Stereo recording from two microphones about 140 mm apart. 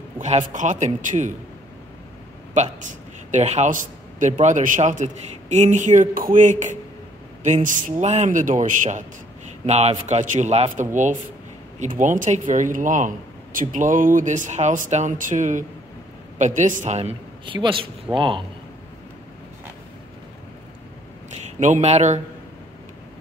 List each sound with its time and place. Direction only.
0.5 s a man's voice: 60° right (ahead or behind)
2.5 s a man's voice: 60° right (ahead or behind)
9.7 s a man's voice: 50° right (ahead or behind)
11.8 s a man's voice: 65° right (ahead or behind)
17.5 s a man's voice: 35° right (ahead or behind)
21.5 s a man's voice: 60° right (ahead or behind)